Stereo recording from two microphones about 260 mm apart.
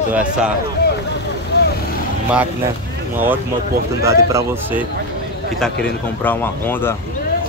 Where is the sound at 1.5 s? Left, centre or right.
Left.